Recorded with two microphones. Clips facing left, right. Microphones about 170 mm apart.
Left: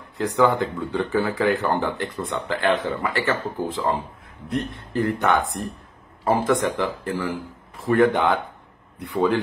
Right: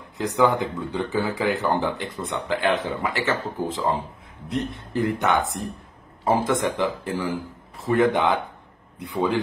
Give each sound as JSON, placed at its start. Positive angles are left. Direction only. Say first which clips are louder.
{"t": 0.2, "sound": "speech", "louder": "left 1 dB", "side_deg": -15}